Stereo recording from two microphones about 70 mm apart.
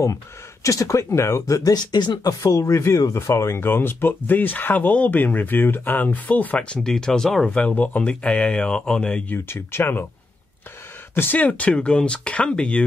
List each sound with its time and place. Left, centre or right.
0.7 s speech: left
1.5 s speech: left
2.4 s speech: left
6.8 s speech: centre
7.5 s speech: centre
9.3 s speech: left
11.3 s speech: left